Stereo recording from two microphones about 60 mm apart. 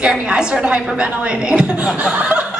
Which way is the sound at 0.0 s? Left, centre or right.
Centre.